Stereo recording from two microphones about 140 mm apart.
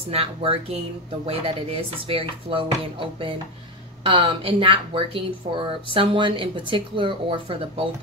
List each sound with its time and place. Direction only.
0.1 s speech: 45° right (ahead or behind)